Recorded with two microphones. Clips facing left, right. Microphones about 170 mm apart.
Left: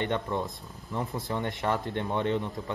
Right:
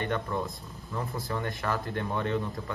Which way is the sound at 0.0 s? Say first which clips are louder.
Left 1 dB; 20° left (ahead or behind).